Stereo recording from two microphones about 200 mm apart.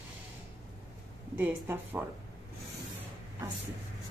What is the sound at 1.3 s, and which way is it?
Speech, 10° right (ahead or behind).